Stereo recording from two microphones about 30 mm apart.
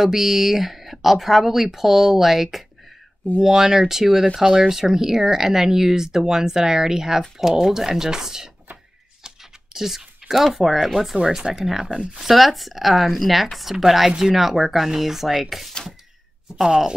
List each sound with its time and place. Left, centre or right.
0.0 s speech: centre
9.2 s a sound: centre
10.9 s speech: centre
11.1 s speech: right
12.2 s speech: centre
16.6 s speech: right